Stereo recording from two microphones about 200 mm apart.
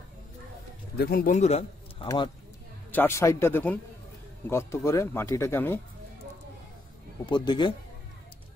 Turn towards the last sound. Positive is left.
turn(degrees=20)  # may be behind; listen again after turning